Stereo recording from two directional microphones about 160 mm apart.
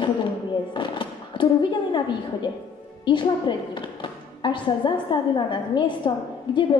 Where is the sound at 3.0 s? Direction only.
30° left (ahead or behind).